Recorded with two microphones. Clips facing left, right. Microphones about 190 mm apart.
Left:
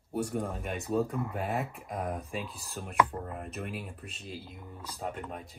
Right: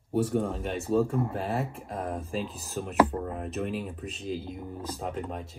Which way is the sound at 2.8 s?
Centre (ahead or behind).